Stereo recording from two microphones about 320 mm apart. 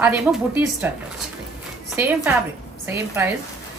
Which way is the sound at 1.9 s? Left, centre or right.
Centre.